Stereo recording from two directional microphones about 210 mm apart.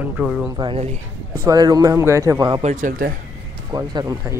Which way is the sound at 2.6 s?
35° right (ahead or behind).